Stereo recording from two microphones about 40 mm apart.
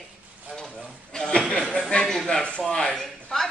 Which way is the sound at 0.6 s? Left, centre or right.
Centre.